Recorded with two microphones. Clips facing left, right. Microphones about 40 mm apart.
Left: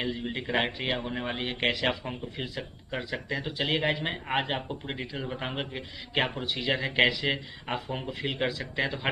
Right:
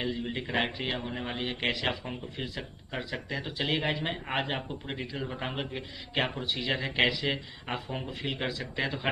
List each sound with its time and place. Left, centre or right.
0.0 s a man's voice: centre